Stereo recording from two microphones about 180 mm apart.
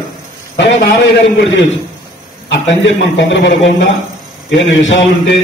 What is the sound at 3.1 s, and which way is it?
Speech, 85° left.